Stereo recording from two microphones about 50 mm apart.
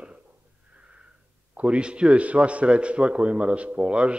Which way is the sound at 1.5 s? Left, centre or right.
Right.